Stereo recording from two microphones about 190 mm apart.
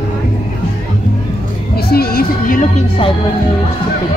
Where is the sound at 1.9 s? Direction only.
55° left (ahead or behind).